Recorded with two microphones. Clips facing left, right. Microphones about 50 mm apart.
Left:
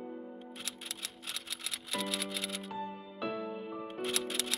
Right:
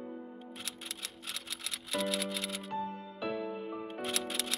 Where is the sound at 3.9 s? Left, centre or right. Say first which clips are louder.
Left 3 dB; centre.